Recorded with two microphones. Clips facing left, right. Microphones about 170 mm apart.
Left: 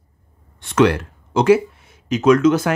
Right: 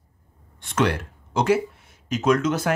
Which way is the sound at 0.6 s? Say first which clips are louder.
Left 7 dB; 90° left.